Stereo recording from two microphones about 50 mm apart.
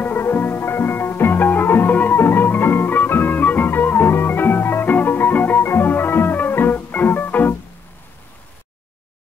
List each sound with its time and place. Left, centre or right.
0.2 s music: left
5.6 s music: left